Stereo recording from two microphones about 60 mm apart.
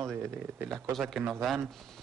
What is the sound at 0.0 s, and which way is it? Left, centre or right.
Speech, right.